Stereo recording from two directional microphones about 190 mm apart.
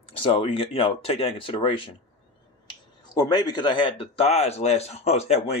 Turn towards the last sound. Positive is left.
turn(degrees=35)  # may be behind; listen again after turning